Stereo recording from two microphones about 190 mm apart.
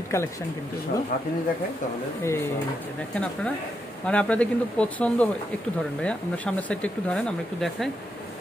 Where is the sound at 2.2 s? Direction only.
15° left (ahead or behind).